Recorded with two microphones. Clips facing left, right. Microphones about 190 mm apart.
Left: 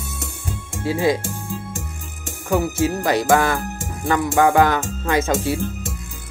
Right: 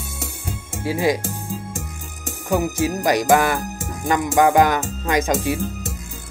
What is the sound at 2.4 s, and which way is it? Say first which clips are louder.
Speech: left 1 dB; 15° right (ahead or behind).